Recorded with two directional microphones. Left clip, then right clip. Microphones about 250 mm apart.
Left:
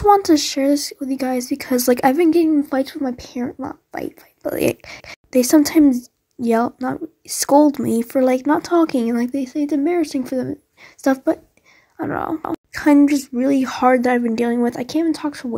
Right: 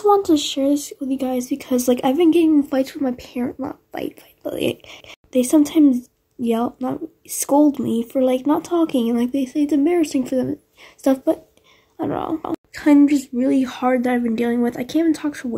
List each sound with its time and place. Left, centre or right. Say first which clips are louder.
0.3 s speech: left 2 dB; left
1.6 s a woman's voice: left 4 dB; left
9.2 s speech: right 1 dB; centre
9.7 s a woman's voice: right 1 dB; centre